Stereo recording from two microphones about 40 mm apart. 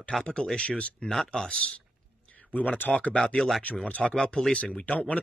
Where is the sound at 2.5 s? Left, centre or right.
Left.